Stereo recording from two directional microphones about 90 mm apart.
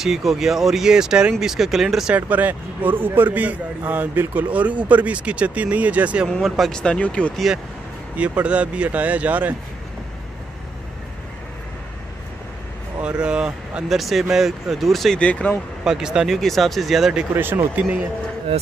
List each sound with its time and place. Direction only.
0.0 s speech: 5° right (ahead or behind)
2.1 s a man's voice: 20° right (ahead or behind)
6.2 s a man's voice: 5° left (ahead or behind)
7.3 s speech: 5° right (ahead or behind)
8.2 s a man's voice: 15° right (ahead or behind)
13.0 s speech: 10° right (ahead or behind)
15.1 s a man's voice: 15° left (ahead or behind)
15.8 s a man's voice: 5° right (ahead or behind)
17.7 s speech: 20° right (ahead or behind)